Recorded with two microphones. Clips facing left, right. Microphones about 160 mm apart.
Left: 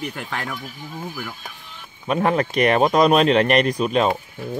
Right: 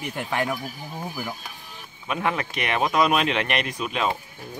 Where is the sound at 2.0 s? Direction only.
40° left (ahead or behind).